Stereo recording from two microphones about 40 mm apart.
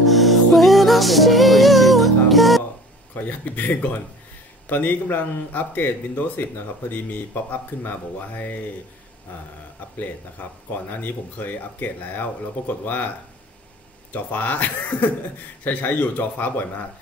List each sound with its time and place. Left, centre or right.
0.0 s music: centre
3.2 s speech: left
10.7 s speech: left
14.1 s speech: left